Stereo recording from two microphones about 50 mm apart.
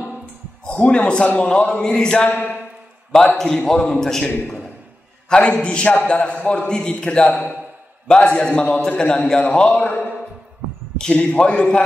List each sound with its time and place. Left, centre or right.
0.7 s a man's voice: left
2.2 s a man's voice: left
3.3 s a man's voice: centre
5.3 s a man's voice: centre
11.0 s a man's voice: centre